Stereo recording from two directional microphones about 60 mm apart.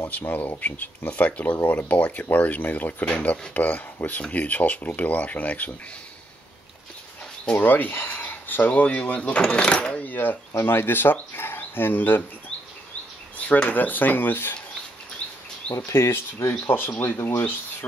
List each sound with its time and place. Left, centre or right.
0.3 s speech: left
7.5 s speech: left
13.5 s speech: left
15.9 s speech: left